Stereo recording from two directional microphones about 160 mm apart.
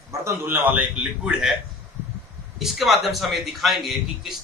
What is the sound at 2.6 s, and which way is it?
A man's voice, centre (ahead or behind).